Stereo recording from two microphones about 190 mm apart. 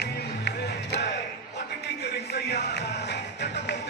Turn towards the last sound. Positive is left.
turn(degrees=65)  # may be behind; listen again after turning